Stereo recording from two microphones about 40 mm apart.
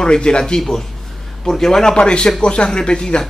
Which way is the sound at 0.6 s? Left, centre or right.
Centre.